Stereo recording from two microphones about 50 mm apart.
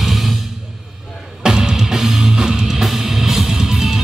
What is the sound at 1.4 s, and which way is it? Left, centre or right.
Music, centre.